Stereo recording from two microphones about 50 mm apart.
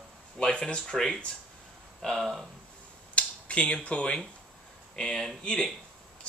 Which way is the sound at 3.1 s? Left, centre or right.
Left.